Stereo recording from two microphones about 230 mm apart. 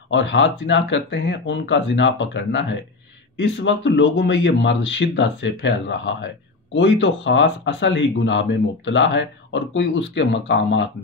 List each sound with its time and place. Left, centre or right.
0.1 s speech: left